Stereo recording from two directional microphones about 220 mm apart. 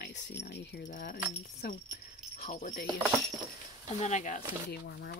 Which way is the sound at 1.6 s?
45° left (ahead or behind).